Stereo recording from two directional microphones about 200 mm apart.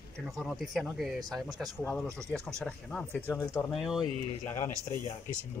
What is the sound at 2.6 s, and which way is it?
Speech, 5° left (ahead or behind).